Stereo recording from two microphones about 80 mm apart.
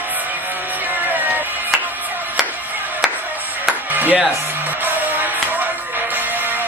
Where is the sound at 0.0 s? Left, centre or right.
Right.